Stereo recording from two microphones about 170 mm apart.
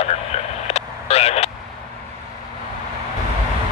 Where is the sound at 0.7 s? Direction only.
35° left (ahead or behind).